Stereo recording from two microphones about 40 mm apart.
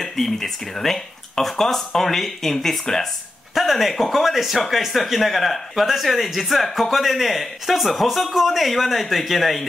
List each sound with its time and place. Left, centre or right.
0.0 s speech: centre
3.5 s speech: centre